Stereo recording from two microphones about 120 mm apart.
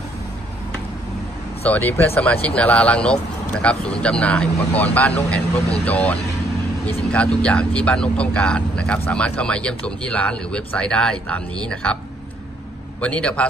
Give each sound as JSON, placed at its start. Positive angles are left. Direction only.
{"t": 1.7, "sound": "speech", "side_deg": 15}
{"t": 13.0, "sound": "speech", "side_deg": 10}